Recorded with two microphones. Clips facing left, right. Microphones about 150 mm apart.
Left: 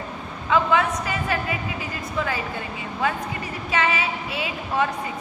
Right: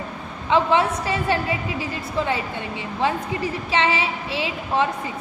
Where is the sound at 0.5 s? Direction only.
30° right (ahead or behind).